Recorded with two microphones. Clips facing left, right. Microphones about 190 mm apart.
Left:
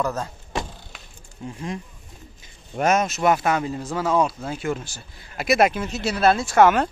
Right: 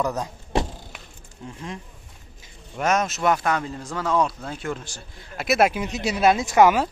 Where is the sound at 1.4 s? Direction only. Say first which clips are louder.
Left 4 dB; 10° left (ahead or behind).